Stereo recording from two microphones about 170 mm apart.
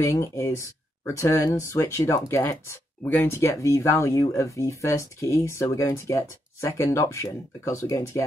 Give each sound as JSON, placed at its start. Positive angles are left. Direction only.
{"t": 0.0, "sound": "speech", "side_deg": 15}